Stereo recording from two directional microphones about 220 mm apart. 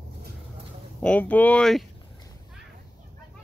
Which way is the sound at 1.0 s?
5° left (ahead or behind).